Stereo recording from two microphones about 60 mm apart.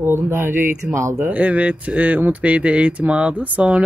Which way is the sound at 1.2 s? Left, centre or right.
Right.